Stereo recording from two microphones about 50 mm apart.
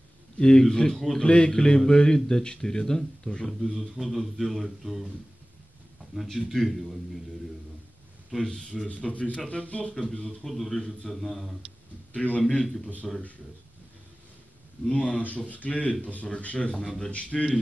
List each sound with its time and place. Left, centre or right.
0.4 s speech: centre
3.4 s speech: centre
6.3 s speech: centre
8.5 s speech: centre
8.8 s speech: left
10.4 s speech: centre
12.1 s speech: left
13.0 s speech: centre
14.9 s speech: left